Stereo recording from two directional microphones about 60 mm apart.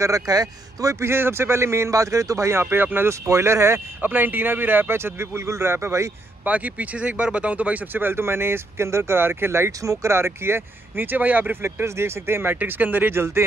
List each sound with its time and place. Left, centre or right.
0.0 s a man's voice: right
0.9 s a man's voice: right
2.6 s speech: right
3.1 s a man's voice: right
4.0 s speech: right
6.4 s speech: right
9.7 s speech: right
10.1 s speech: right
11.6 s speech: right